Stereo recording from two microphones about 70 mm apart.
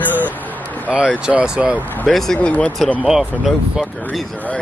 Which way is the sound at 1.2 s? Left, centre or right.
Centre.